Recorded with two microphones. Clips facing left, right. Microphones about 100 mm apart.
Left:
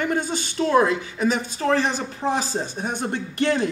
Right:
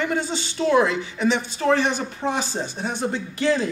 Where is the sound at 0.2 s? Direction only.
50° left (ahead or behind).